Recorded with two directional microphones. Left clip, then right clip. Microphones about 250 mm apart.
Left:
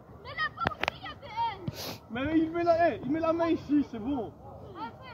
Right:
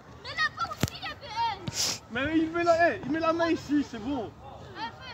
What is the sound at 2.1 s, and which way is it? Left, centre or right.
A man's voice, left.